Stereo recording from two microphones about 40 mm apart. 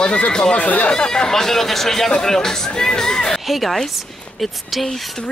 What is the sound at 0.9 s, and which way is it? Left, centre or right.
Speech, centre.